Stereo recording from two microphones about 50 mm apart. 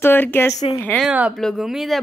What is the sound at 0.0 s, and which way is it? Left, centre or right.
Speech, left.